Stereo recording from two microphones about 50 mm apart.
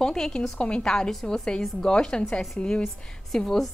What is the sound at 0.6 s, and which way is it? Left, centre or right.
A woman's voice, left.